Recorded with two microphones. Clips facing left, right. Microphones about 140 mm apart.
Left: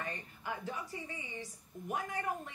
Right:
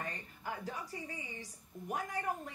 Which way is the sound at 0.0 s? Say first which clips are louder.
Left 1 dB; 40° right (ahead or behind).